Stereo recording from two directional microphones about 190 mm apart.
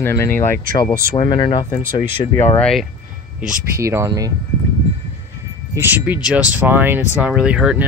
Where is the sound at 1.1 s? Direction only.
25° left (ahead or behind).